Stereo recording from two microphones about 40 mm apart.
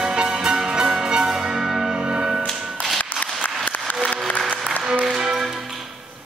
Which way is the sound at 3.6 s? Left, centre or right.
Left.